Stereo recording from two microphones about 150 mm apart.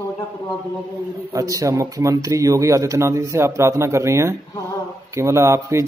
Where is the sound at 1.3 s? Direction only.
20° right (ahead or behind).